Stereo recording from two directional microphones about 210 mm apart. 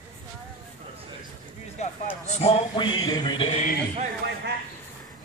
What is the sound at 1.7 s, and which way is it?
A man's voice, 30° left (ahead or behind).